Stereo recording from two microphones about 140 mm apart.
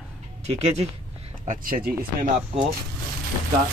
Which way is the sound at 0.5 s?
50° right (ahead or behind).